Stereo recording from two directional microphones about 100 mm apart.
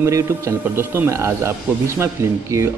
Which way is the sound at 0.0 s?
30° right (ahead or behind).